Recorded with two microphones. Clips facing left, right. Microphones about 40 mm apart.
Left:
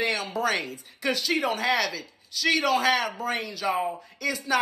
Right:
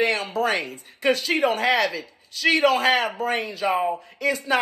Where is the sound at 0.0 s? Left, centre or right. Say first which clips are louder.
Right 4 dB; right.